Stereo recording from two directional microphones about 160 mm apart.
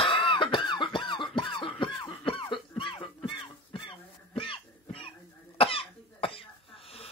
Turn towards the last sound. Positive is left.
turn(degrees=40)  # may be behind; listen again after turning